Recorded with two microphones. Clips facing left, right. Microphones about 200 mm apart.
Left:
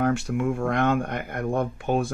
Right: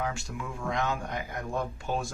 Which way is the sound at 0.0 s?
60° left (ahead or behind).